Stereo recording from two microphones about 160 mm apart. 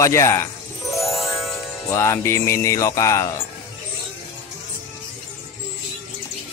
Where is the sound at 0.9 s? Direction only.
Centre (ahead or behind).